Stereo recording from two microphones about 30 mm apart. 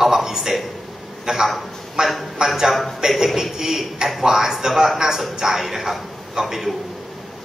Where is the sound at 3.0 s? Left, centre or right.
Centre.